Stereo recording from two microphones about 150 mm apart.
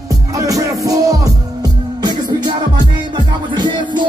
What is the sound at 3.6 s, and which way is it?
Music, 30° right (ahead or behind).